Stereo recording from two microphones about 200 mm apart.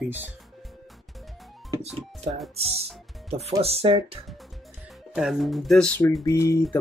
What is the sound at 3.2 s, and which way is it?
Speech, 30° right (ahead or behind).